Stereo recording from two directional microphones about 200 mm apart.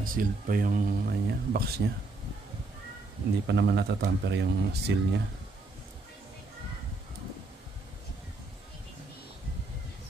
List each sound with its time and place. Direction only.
0.0 s speech: 45° right (ahead or behind)
3.4 s speech: 60° right (ahead or behind)